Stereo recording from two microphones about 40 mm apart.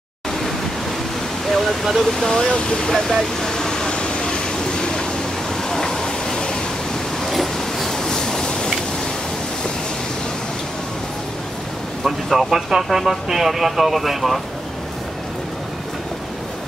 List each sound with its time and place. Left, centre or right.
1.5 s speech: centre; by 2.9 s left
3.1 s vehicle: centre
7.2 s train: centre
7.9 s a sound: centre
12.0 s speech: centre